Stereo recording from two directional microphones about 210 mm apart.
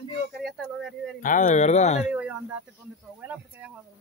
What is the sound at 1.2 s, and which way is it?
Speech, 35° left (ahead or behind).